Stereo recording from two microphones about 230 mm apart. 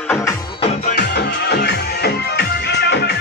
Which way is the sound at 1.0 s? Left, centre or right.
Left.